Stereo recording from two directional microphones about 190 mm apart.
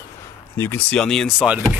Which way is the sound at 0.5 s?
10° left (ahead or behind).